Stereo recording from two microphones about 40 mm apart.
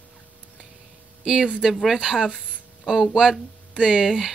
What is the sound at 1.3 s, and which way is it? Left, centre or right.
Speech, centre.